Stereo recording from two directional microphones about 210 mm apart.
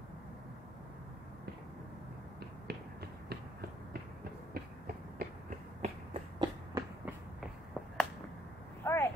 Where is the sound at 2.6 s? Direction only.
50° right (ahead or behind).